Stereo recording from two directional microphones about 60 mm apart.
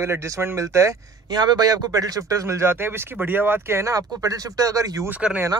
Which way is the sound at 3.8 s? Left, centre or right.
Right.